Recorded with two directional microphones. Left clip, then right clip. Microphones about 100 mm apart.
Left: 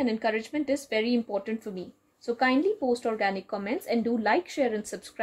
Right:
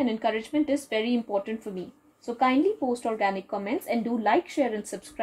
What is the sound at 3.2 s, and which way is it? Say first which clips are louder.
Speech: right 2 dB; 55° left (ahead or behind).